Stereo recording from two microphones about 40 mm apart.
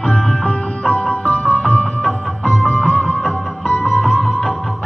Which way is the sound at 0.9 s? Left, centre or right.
Left.